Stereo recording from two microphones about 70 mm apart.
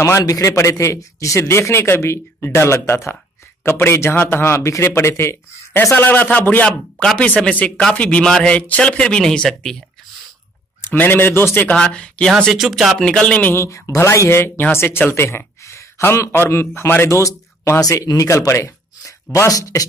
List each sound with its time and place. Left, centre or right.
0.2 s a man's voice: left; by 9.8 s centre
10.9 s a man's voice: left
11.7 s speech: centre
12.5 s speech: centre
13.0 s speech: centre
13.6 s a man's voice: left
17.2 s speech: left